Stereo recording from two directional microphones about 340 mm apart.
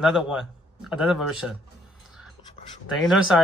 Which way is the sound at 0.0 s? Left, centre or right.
Centre.